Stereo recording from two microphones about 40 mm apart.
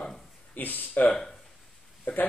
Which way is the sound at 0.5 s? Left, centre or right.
Left.